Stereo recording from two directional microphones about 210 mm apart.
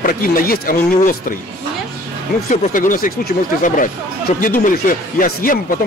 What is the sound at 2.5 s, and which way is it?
Speech, 40° left (ahead or behind).